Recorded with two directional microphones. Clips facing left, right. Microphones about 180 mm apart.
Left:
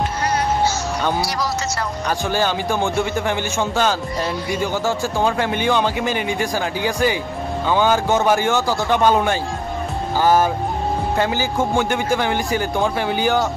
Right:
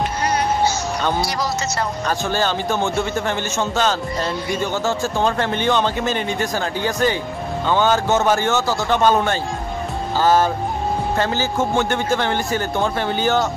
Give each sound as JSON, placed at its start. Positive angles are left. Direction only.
{"t": 1.2, "sound": "speech", "side_deg": -20}
{"t": 2.0, "sound": "a man's voice", "side_deg": 10}